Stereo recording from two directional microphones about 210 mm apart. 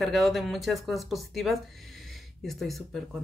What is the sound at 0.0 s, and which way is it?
A woman's voice, centre (ahead or behind).